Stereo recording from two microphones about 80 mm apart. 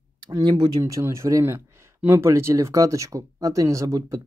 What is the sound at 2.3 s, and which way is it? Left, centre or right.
Speech, right.